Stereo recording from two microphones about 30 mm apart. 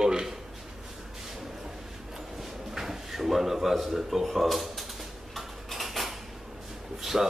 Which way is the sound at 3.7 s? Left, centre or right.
Centre.